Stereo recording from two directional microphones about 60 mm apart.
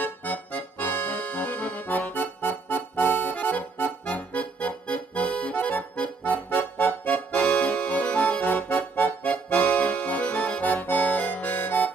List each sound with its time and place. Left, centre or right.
0.0 s accordion: left
6.5 s music: left